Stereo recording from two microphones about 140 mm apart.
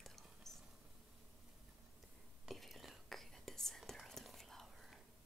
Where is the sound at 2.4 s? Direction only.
Centre (ahead or behind).